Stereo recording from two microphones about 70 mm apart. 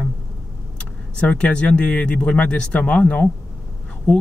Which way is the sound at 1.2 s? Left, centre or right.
Centre.